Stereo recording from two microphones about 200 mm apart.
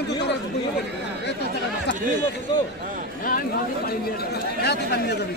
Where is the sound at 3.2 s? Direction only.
45° left (ahead or behind).